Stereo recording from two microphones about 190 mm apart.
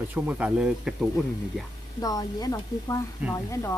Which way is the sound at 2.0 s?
20° left (ahead or behind).